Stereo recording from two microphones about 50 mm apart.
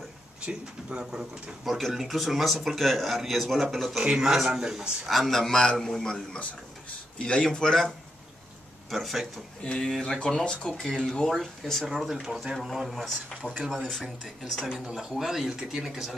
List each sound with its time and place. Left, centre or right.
0.5 s speech: right
1.7 s a man's voice: centre
5.0 s a man's voice: centre
8.9 s a man's voice: centre
9.6 s speech: centre
9.8 s a man's voice: centre
10.1 s a man's voice: centre
13.7 s a man's voice: centre
14.0 s speech: centre